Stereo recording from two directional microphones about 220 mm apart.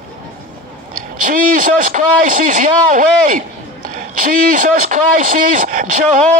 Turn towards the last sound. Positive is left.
turn(degrees=-35)  # may be behind; listen again after turning